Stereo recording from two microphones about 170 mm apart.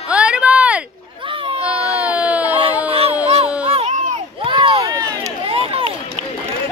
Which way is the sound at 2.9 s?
35° right (ahead or behind).